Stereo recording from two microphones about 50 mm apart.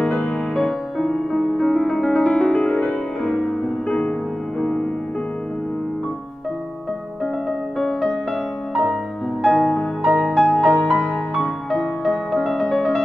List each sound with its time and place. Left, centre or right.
0.0 s music: centre
7.8 s music: centre
9.4 s music: centre